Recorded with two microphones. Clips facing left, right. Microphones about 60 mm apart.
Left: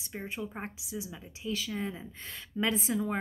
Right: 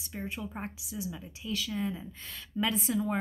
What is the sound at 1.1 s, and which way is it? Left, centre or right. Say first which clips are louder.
A woman's voice: even; left.